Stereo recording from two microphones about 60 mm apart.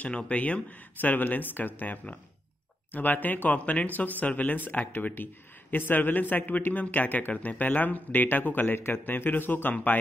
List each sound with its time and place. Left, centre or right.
0.0 s speech: centre